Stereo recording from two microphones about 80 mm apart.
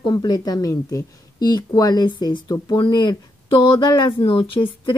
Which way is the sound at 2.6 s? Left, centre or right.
Left.